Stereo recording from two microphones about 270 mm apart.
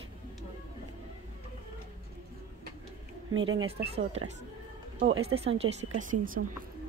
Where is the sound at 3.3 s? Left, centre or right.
Right.